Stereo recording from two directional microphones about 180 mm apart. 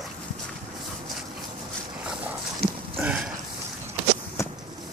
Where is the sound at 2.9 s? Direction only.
5° right (ahead or behind).